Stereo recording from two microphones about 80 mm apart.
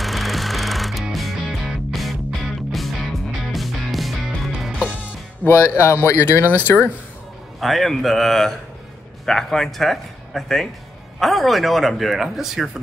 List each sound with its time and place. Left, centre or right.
0.0 s music: centre
5.4 s speech: left
7.6 s speech: centre